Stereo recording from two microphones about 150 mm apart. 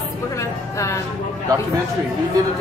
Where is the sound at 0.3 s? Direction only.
20° left (ahead or behind).